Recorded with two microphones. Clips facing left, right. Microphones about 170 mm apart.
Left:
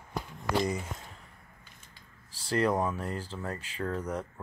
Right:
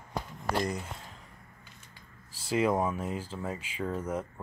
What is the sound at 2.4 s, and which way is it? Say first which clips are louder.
Speech: even; 5° right (ahead or behind).